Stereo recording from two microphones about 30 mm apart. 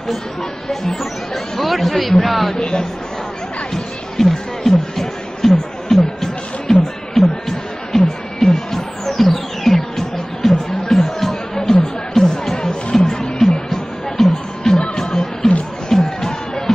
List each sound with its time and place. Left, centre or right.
0.7 s speech: centre
2.5 s speech: left
3.7 s music: centre
13.5 s music: centre
15.0 s music: left